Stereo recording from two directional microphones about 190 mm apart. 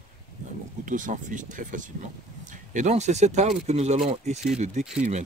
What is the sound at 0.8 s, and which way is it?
Speech, 45° right (ahead or behind).